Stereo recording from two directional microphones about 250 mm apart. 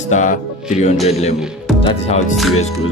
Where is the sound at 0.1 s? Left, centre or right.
Left.